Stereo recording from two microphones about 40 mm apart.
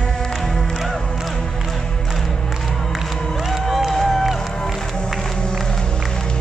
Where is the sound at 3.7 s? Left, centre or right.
Centre.